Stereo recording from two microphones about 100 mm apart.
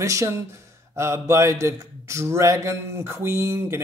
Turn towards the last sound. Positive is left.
turn(degrees=-25)  # may be behind; listen again after turning